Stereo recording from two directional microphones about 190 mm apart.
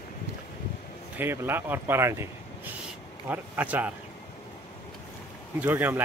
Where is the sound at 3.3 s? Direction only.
10° right (ahead or behind).